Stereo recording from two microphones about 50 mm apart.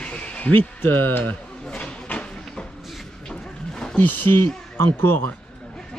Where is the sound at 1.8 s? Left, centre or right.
Left.